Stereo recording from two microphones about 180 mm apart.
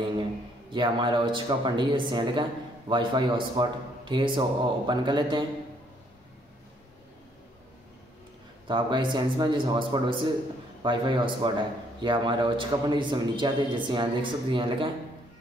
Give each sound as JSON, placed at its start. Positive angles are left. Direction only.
{"t": 0.2, "sound": "a man's voice", "side_deg": -25}
{"t": 8.6, "sound": "a man's voice", "side_deg": -25}